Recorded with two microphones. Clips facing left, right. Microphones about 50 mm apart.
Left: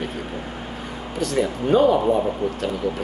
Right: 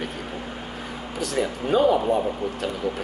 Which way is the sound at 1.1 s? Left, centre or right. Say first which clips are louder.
Left 3 dB; centre.